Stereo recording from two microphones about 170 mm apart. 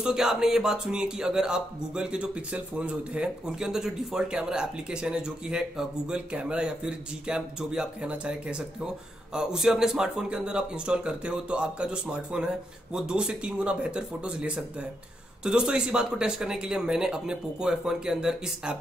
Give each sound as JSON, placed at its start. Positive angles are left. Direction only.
{"t": 0.0, "sound": "speech", "side_deg": -5}